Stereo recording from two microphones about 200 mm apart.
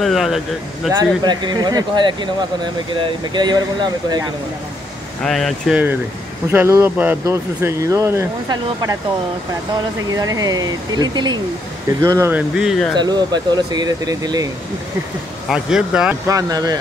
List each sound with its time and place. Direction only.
0.0 s speech: centre (ahead or behind)
0.9 s speech: 20° right (ahead or behind)
5.2 s speech: centre (ahead or behind); by 8.9 s 15° right (ahead or behind)
10.1 s speech: 20° right (ahead or behind); by 12.9 s centre (ahead or behind)
12.9 s speech: 20° right (ahead or behind)
15.5 s speech: 5° right (ahead or behind)